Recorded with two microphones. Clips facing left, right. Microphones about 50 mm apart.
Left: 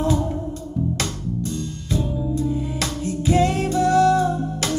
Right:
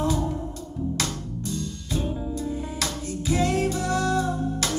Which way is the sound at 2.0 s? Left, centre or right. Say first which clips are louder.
Left 3 dB; right.